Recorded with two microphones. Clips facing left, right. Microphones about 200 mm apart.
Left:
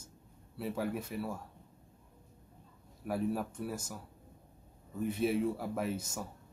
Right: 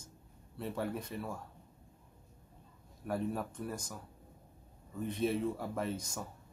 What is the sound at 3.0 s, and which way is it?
Speech, 5° left (ahead or behind).